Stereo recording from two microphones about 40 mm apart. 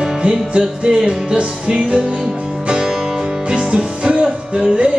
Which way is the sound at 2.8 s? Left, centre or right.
Centre.